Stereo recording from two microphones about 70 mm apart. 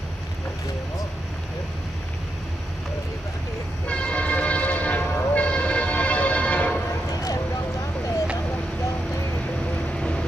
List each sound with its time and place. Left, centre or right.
3.8 s train: centre
9.9 s vehicle: centre